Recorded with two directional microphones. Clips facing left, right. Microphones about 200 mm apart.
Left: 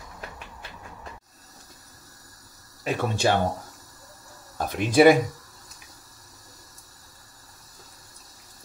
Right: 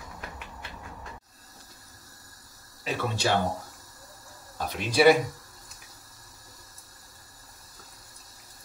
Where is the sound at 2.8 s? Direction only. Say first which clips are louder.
Left 5 dB; 50° left (ahead or behind).